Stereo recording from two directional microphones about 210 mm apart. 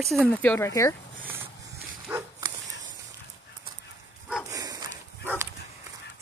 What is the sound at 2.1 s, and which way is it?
Dog, 5° right (ahead or behind).